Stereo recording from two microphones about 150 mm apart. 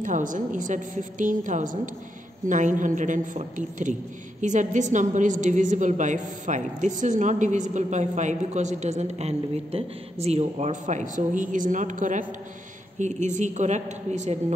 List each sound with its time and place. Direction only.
0.0 s a woman's voice: 60° right (ahead or behind)